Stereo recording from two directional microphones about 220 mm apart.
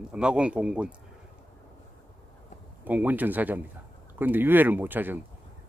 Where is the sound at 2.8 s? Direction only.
5° right (ahead or behind).